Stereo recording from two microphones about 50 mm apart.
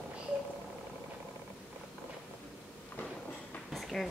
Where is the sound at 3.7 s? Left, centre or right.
Centre.